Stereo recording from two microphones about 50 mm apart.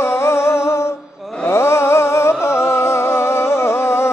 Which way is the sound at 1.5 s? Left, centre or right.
Left.